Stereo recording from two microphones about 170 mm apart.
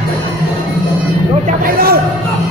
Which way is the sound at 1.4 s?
60° right (ahead or behind).